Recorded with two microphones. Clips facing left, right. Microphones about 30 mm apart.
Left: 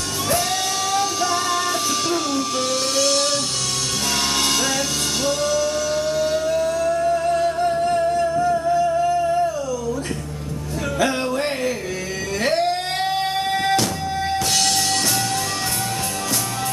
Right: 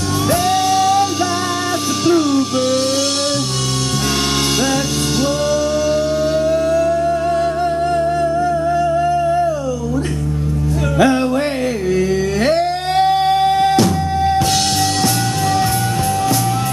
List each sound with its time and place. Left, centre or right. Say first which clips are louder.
0.3 s music: right 7 dB; centre
5.2 s a sound: right 3 dB; centre
8.2 s humming: right 3 dB; centre
11.0 s music: right 7 dB; centre